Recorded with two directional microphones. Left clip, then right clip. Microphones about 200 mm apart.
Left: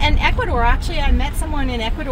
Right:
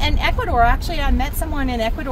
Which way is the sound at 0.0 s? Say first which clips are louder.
Left 2 dB; 10° right (ahead or behind).